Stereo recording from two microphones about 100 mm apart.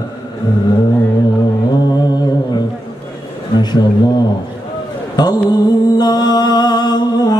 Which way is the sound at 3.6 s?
45° left (ahead or behind).